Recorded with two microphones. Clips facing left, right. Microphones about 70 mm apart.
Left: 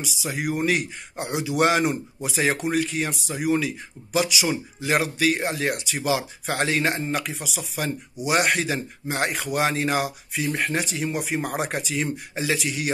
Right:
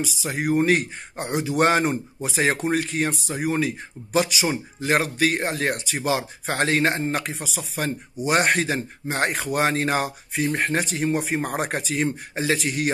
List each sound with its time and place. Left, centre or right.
0.0 s speech: right